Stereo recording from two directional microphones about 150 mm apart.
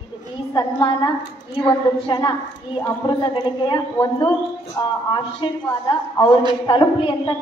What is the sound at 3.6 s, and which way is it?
A woman's voice, 25° left (ahead or behind).